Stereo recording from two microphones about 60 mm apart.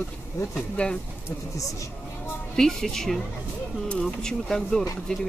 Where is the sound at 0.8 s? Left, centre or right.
Left.